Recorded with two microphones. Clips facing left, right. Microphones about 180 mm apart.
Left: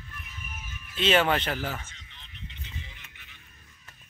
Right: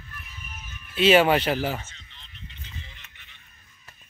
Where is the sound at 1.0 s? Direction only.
10° right (ahead or behind).